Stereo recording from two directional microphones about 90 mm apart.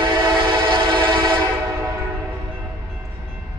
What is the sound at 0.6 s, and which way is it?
Train, 70° right (ahead or behind).